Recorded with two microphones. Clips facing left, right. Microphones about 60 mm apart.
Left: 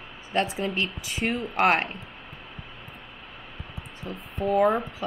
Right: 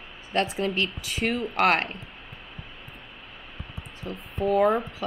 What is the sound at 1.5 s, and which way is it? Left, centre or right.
Speech, centre.